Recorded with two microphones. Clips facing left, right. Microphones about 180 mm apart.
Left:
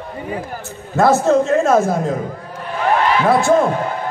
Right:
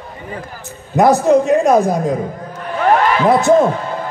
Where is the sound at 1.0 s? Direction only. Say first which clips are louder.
Right 2 dB; 15° right (ahead or behind).